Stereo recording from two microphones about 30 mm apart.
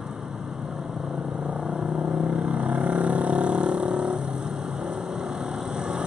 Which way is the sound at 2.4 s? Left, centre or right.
Right.